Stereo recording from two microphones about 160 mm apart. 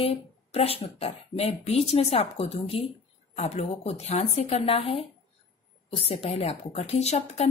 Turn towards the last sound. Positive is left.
turn(degrees=40)  # may be behind; listen again after turning